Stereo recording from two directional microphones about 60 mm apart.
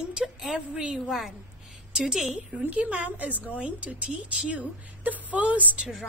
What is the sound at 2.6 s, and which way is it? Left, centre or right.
A woman's voice, right.